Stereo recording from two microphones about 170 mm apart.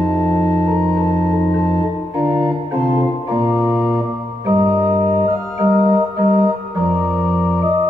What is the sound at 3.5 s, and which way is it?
Organ, centre (ahead or behind).